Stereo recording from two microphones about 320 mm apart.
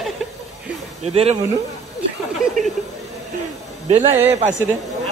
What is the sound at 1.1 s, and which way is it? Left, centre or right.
Speech, centre.